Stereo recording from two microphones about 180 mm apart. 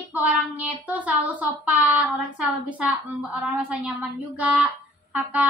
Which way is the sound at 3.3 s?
5° right (ahead or behind).